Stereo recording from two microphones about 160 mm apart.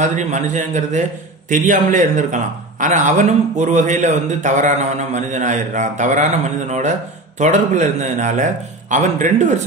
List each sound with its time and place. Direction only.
0.0 s a man's voice: 50° right (ahead or behind)